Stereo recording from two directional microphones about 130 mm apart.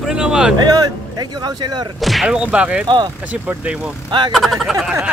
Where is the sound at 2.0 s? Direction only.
Centre (ahead or behind).